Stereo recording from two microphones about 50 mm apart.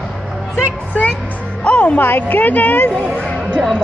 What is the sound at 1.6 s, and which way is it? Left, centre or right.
Speech, left.